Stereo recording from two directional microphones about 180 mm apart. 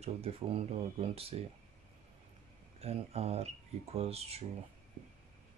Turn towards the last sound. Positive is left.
turn(degrees=-35)  # may be behind; listen again after turning